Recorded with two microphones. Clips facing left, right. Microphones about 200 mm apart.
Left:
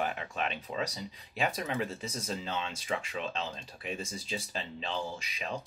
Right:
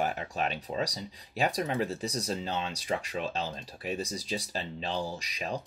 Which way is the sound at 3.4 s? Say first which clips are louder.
Right 3 dB; 40° right (ahead or behind).